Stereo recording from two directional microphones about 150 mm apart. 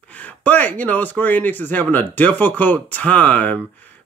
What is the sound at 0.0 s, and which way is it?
A man's voice, 10° left (ahead or behind).